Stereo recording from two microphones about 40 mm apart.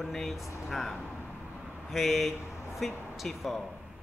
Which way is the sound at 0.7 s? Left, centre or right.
Centre.